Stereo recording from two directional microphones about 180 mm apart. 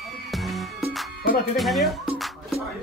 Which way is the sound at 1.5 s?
Centre (ahead or behind).